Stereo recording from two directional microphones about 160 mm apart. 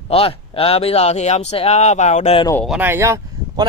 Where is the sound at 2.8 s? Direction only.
15° right (ahead or behind).